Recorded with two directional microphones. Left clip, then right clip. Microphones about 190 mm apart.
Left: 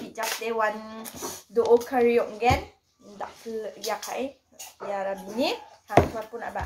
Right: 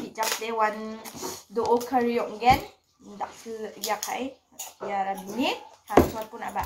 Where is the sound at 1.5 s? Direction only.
15° left (ahead or behind).